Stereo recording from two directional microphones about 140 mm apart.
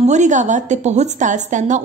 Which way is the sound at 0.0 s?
60° right (ahead or behind).